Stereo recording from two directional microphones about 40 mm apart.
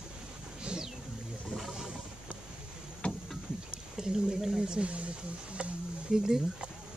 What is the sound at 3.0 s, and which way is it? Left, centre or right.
Boat, left.